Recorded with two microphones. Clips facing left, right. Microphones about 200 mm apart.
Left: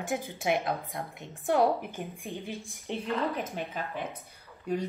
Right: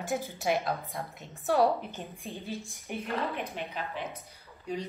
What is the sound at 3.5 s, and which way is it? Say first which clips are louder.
Speech: left 2 dB; 50° left (ahead or behind).